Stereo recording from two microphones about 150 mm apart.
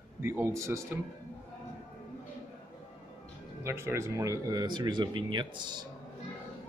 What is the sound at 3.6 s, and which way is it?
Speech, 20° right (ahead or behind).